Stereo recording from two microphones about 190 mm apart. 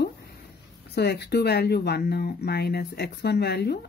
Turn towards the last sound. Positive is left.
turn(degrees=60)  # may be behind; listen again after turning